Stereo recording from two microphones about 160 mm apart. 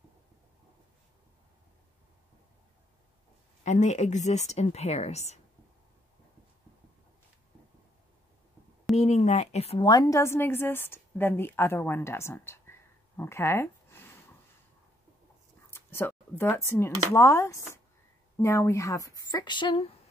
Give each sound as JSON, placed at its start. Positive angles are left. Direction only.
{"t": 3.6, "sound": "a woman's voice", "side_deg": 50}
{"t": 8.9, "sound": "a woman's voice", "side_deg": 45}
{"t": 9.8, "sound": "a woman's voice", "side_deg": 20}
{"t": 15.7, "sound": "speech", "side_deg": 15}